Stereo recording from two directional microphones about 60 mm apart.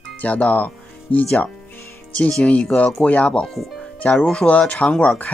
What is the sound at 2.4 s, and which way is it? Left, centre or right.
Speech, centre.